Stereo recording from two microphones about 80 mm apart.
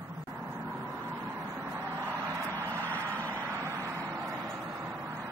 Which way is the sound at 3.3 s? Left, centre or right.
Right.